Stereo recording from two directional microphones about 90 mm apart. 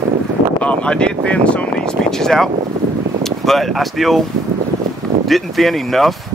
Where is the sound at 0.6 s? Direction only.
15° left (ahead or behind).